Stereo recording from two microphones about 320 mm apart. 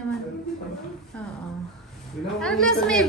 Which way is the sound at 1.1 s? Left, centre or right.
Centre.